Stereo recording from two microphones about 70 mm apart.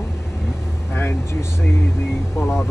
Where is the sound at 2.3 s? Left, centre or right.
Left.